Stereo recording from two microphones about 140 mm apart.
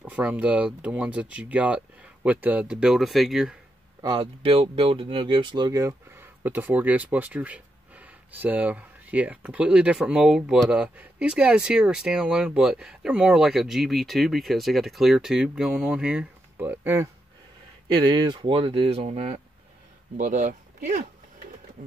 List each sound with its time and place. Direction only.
0.0 s speech: 10° right (ahead or behind)
4.0 s speech: 35° right (ahead or behind); by 17.1 s 15° right (ahead or behind)
17.9 s speech: 30° right (ahead or behind); by 19.4 s 50° right (ahead or behind)
20.2 s speech: 70° right (ahead or behind)